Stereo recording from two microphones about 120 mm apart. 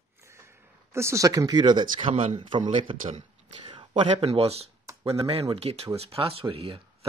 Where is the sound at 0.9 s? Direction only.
25° right (ahead or behind); by 3.0 s 45° right (ahead or behind).